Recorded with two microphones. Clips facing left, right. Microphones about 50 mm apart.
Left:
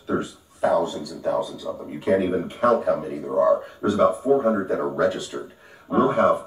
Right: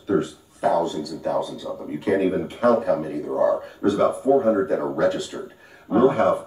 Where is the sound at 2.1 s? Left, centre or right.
Centre.